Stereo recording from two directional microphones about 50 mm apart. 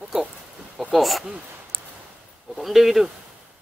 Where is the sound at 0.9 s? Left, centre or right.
Centre.